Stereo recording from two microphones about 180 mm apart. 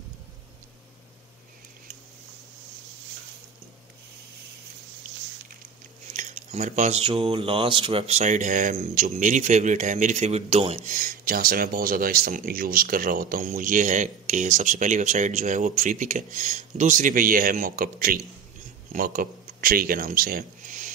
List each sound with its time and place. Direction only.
6.1 s speech: 40° right (ahead or behind)
10.8 s speech: 50° right (ahead or behind)